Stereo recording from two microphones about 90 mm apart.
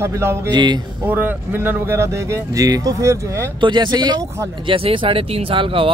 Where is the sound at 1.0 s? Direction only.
20° right (ahead or behind).